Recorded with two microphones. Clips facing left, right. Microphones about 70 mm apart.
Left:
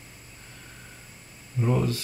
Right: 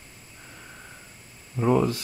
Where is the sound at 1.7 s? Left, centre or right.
Right.